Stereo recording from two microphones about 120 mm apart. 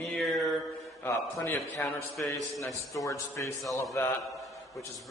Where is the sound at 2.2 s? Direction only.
15° left (ahead or behind).